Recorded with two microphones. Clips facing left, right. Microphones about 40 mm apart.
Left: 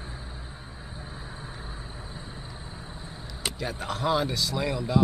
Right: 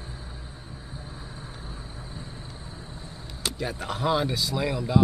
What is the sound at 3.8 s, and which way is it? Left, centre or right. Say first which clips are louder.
Speech: right 1 dB; centre.